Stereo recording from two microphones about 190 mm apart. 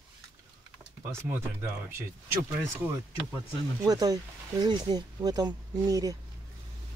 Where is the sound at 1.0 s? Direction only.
10° right (ahead or behind).